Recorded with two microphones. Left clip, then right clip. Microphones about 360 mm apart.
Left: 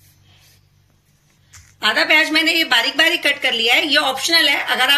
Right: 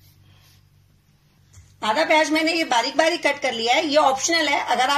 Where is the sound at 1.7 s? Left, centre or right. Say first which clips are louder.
Left 4 dB; centre.